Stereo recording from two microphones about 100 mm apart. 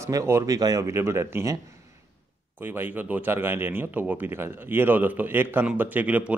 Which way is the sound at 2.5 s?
20° right (ahead or behind).